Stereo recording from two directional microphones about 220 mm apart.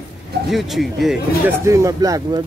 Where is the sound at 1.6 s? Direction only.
15° right (ahead or behind).